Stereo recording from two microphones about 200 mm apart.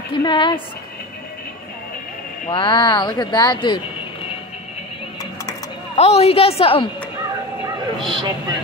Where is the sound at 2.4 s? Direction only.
25° left (ahead or behind).